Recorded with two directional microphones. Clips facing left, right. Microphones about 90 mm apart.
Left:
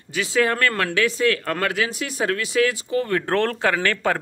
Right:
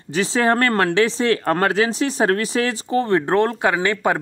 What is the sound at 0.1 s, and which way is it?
Speech, 35° right (ahead or behind).